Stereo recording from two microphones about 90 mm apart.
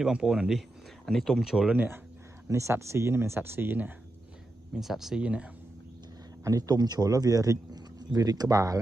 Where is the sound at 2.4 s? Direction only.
30° right (ahead or behind).